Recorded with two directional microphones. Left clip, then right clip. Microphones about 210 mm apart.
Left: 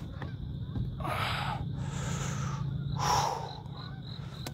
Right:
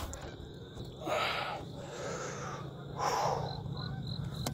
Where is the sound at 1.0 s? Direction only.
5° right (ahead or behind); by 2.6 s 15° left (ahead or behind).